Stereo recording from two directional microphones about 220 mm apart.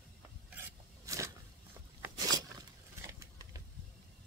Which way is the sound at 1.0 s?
15° right (ahead or behind).